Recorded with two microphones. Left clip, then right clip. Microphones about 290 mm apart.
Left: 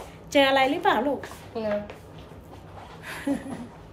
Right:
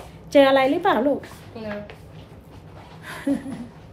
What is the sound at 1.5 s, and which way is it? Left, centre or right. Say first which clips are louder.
Speech: left 5 dB; left.